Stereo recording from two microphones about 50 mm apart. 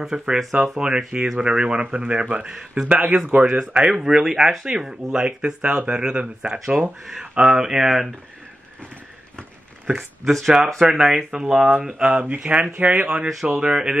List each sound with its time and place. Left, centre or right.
0.1 s speech: centre
2.5 s speech: centre
2.9 s speech: right
3.7 s speech: centre
6.6 s speech: centre
10.2 s speech: centre